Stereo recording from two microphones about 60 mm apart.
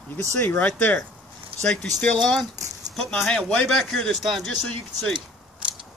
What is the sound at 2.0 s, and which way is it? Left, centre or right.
Speech, centre.